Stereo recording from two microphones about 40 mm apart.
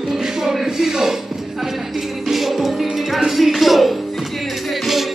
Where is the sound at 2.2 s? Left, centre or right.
Centre.